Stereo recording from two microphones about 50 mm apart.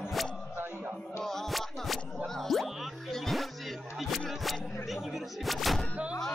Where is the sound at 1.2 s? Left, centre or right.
Centre.